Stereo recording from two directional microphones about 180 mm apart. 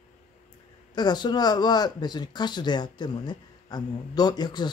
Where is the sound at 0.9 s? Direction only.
25° left (ahead or behind).